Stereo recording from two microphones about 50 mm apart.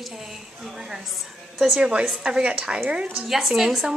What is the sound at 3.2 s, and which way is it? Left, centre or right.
Speech, centre.